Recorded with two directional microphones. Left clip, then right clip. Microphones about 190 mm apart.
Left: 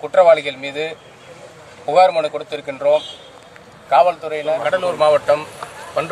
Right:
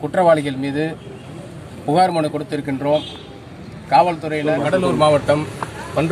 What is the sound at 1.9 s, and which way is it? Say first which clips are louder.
A man's voice: left 3 dB; 10° right (ahead or behind).